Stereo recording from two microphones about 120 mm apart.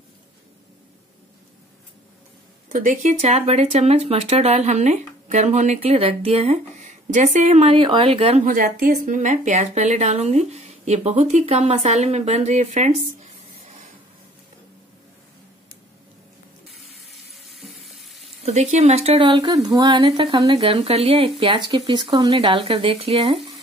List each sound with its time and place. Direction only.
2.7 s speech: 90° right
5.8 s speech: 50° right (ahead or behind); by 7.7 s 70° right (ahead or behind)
7.7 s speech: 45° right (ahead or behind); by 12.9 s 80° right
17.1 s water tap: centre (ahead or behind)
18.4 s speech: 70° right (ahead or behind); by 19.3 s 55° right (ahead or behind)
19.3 s speech: 30° right (ahead or behind)
20.5 s speech: 55° right (ahead or behind); by 22.3 s 35° right (ahead or behind)
22.3 s speech: 50° right (ahead or behind)